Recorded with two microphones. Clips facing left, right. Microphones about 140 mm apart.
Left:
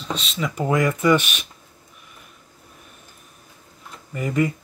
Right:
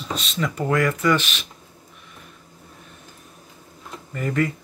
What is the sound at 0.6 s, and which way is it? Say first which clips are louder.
Speech: left 2 dB; 15° left (ahead or behind).